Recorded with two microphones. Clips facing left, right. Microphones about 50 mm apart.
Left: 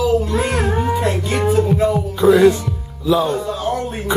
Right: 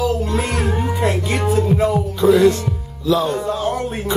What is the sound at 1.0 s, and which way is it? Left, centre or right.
Music, centre.